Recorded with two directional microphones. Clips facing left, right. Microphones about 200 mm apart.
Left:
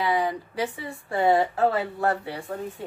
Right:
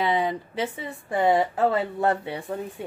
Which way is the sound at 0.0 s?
25° right (ahead or behind).